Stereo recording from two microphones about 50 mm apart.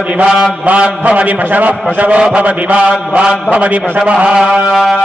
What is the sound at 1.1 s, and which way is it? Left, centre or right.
A man's voice, right.